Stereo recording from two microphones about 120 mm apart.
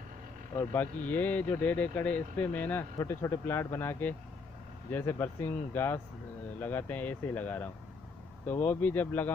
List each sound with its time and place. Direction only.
0.7 s speech: 15° left (ahead or behind)